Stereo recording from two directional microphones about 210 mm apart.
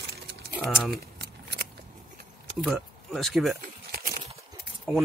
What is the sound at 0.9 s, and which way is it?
Keys jangling, 50° right (ahead or behind).